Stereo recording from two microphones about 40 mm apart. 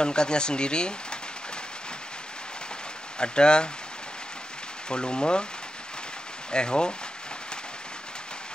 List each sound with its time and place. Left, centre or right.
0.0 s speech: left
3.2 s speech: left
4.8 s speech: left
6.5 s speech: left